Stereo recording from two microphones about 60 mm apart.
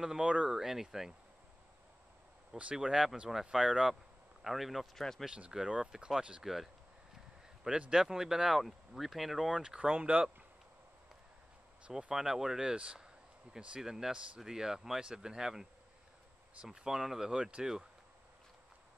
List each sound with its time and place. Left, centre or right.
0.0 s speech: centre
0.5 s speech: centre
2.5 s speech: centre
6.4 s speech: centre
7.9 s speech: centre
12.1 s speech: centre
16.6 s speech: centre